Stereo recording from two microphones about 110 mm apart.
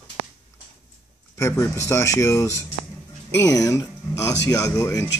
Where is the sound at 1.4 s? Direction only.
25° left (ahead or behind).